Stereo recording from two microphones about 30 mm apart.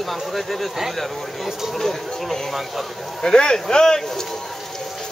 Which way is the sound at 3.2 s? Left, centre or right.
Left.